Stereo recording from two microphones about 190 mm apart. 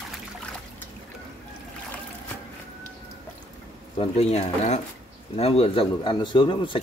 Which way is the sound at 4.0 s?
35° left (ahead or behind).